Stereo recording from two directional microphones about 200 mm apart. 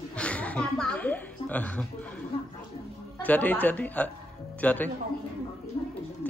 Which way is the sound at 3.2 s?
10° left (ahead or behind).